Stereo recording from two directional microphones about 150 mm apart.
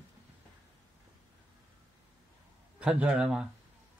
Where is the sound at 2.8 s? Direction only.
5° right (ahead or behind).